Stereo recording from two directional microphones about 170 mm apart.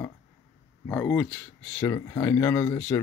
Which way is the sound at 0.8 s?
10° left (ahead or behind).